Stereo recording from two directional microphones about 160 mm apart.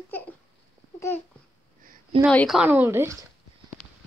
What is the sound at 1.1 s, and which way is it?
Babbling, 15° left (ahead or behind).